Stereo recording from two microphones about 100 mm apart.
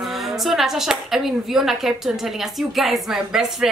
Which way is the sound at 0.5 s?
5° right (ahead or behind).